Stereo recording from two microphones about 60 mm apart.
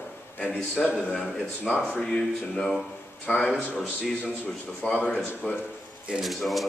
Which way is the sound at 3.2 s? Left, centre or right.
Left.